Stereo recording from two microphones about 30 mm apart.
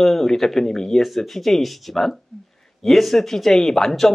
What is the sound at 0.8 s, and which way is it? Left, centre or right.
Speech, centre.